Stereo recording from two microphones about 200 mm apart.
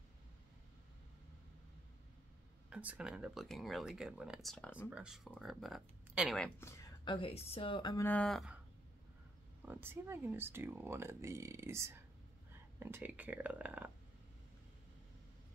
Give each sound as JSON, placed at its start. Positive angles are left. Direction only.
{"t": 2.7, "sound": "speech", "side_deg": -5}
{"t": 4.8, "sound": "speech", "side_deg": -5}
{"t": 6.6, "sound": "a sound", "side_deg": 15}
{"t": 7.2, "sound": "speech", "side_deg": 30}
{"t": 8.1, "sound": "speech", "side_deg": 5}
{"t": 9.7, "sound": "speech", "side_deg": -10}